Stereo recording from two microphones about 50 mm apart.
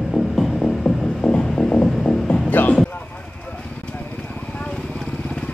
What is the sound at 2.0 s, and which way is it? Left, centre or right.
Music, centre.